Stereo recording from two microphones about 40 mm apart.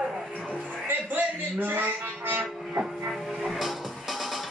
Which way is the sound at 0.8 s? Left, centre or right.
Right.